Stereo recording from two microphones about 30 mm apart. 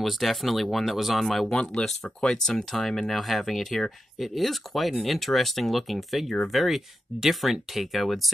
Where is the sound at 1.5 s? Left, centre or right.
Left.